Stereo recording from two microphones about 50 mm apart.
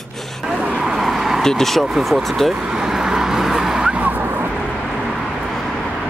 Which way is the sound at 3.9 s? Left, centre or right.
Right.